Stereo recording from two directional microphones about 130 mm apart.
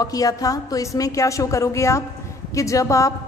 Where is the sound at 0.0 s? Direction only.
25° left (ahead or behind).